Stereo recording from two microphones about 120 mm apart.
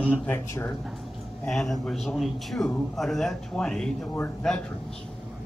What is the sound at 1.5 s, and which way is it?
Speech, 5° left (ahead or behind).